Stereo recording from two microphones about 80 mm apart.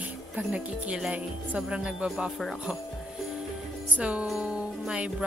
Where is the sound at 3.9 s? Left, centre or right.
Centre.